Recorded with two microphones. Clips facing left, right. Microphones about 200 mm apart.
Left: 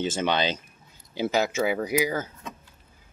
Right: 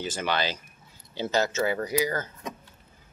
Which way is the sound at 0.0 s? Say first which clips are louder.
Left 4 dB; 25° left (ahead or behind).